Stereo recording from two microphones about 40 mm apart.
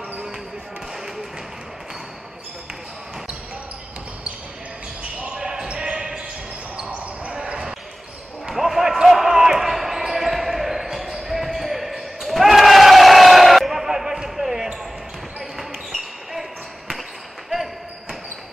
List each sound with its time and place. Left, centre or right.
5.2 s basketball bounce: right
6.8 s basketball bounce: right
8.5 s basketball bounce: centre